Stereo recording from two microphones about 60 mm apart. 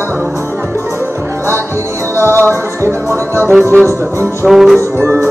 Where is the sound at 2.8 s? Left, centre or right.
Right.